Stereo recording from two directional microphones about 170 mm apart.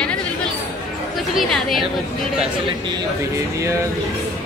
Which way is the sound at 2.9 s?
20° right (ahead or behind).